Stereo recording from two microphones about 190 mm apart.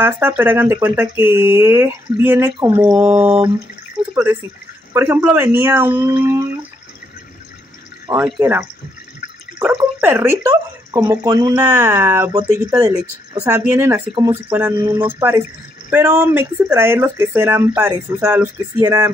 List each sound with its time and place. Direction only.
0.0 s speech: 10° right (ahead or behind)
8.2 s speech: 10° right (ahead or behind)
14.5 s speech: 10° right (ahead or behind)